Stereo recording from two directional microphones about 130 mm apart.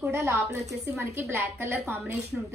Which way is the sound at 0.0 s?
20° right (ahead or behind).